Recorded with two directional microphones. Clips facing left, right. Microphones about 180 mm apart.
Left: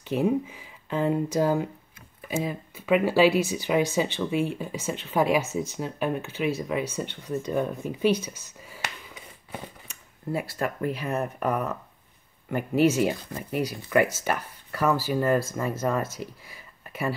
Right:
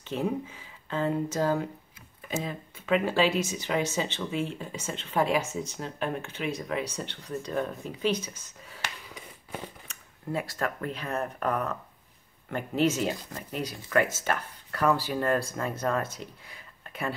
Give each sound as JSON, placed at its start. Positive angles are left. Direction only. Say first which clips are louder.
{"t": 0.0, "sound": "speech", "louder": "left 6 dB", "side_deg": 10}
{"t": 7.8, "sound": "speech", "louder": "left 6 dB", "side_deg": 55}
{"t": 8.3, "sound": "speech", "louder": "left 4 dB", "side_deg": 0}
{"t": 10.3, "sound": "speech", "louder": "left 2 dB", "side_deg": 10}